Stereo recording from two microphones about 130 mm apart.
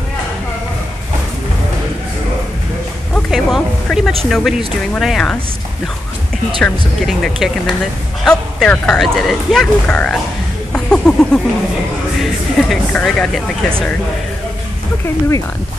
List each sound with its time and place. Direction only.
3.3 s speech: centre (ahead or behind)
6.6 s speech: centre (ahead or behind)
10.7 s a sound: 5° left (ahead or behind)
12.2 s speech: 5° left (ahead or behind)